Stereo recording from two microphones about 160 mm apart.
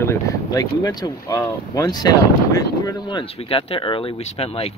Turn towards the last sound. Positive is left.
turn(degrees=40)  # may be behind; listen again after turning